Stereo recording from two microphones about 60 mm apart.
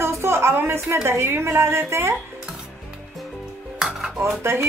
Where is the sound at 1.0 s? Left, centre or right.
Right.